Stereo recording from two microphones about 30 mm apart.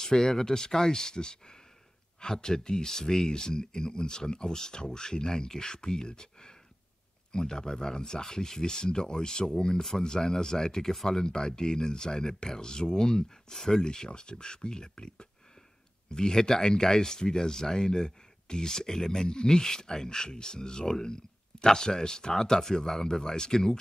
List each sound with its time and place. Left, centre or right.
0.0 s speech: centre
11.2 s speech: left
13.8 s speech: left
22.3 s speech: centre